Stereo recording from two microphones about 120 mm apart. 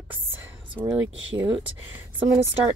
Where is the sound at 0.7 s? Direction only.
15° right (ahead or behind).